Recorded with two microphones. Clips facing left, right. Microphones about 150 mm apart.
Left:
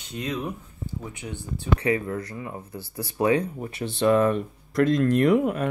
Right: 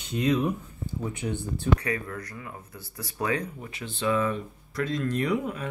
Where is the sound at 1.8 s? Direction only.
25° left (ahead or behind).